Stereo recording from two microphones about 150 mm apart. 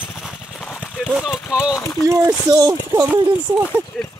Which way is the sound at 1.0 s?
5° right (ahead or behind).